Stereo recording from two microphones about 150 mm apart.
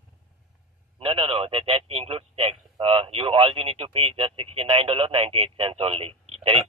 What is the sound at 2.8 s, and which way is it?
Speech, 40° right (ahead or behind).